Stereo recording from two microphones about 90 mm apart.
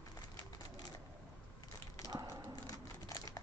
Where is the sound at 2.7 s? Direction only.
40° left (ahead or behind).